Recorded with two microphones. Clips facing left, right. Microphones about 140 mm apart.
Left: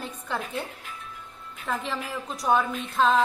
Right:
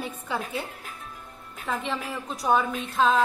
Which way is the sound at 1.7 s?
Centre (ahead or behind).